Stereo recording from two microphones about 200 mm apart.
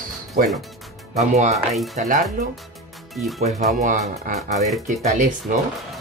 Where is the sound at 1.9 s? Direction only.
35° right (ahead or behind).